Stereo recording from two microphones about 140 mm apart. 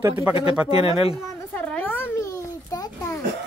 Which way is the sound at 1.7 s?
15° left (ahead or behind).